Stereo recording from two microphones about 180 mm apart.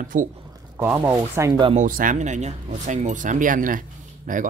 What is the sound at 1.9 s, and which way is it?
Speech, 50° right (ahead or behind).